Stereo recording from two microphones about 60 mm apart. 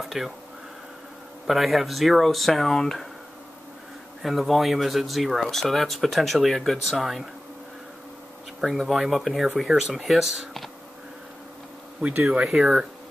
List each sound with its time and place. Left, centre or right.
0.0 s a sound: centre
1.5 s speech: centre
4.2 s speech: centre
8.5 s speech: centre
12.0 s speech: right
12.4 s speech: centre